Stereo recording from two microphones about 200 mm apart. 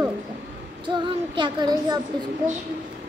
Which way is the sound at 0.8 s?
25° right (ahead or behind).